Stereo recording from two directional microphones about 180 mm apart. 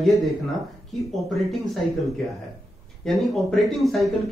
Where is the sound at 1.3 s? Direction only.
Centre (ahead or behind).